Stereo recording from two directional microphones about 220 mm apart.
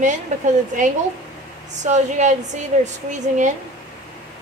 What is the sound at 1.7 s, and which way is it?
Speech, 30° right (ahead or behind).